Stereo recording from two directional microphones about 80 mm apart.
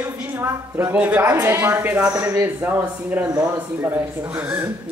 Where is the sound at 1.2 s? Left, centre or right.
Right.